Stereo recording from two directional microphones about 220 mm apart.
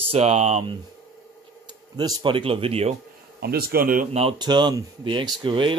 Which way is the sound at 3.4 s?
45° right (ahead or behind).